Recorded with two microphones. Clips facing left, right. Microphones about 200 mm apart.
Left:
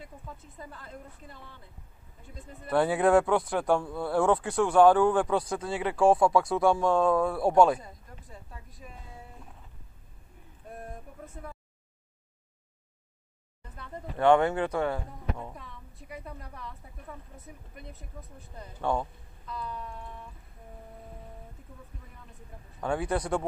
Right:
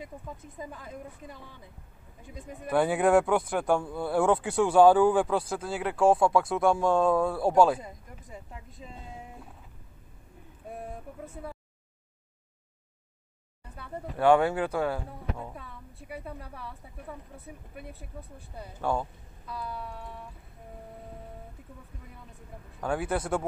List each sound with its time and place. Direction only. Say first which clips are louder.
0.0 s speech: right 4 dB; 15° right (ahead or behind)
2.8 s speech: even; centre (ahead or behind)
7.8 s speech: right 3 dB; 20° right (ahead or behind)
13.7 s speech: right 1 dB; 10° right (ahead or behind)
17.7 s speech: right 3 dB; 10° right (ahead or behind)
22.8 s speech: even; 5° right (ahead or behind)